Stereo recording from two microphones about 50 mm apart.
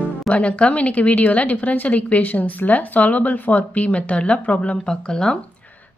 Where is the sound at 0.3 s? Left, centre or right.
Left.